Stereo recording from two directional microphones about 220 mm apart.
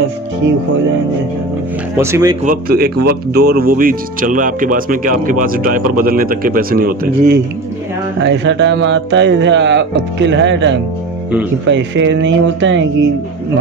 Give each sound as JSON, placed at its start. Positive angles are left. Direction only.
{"t": 2.0, "sound": "speech", "side_deg": -10}
{"t": 2.4, "sound": "speech", "side_deg": -40}
{"t": 8.2, "sound": "speech", "side_deg": -55}